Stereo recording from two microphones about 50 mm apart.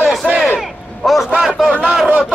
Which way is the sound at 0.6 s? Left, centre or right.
Centre.